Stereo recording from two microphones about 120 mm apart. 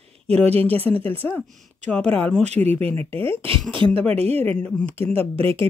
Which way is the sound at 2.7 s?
55° right (ahead or behind).